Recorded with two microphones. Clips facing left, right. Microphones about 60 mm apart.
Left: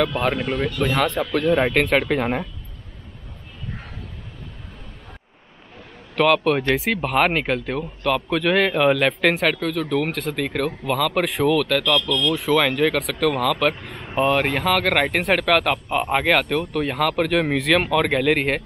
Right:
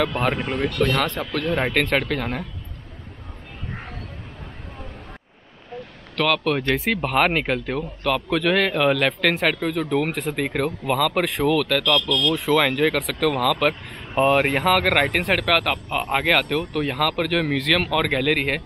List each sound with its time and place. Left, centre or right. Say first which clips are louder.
0.8 s speech: left 2 dB; centre
2.1 s speech: left 5 dB; centre
6.1 s speech: left 4 dB; centre
9.6 s speech: even; centre
14.2 s speech: right 1 dB; centre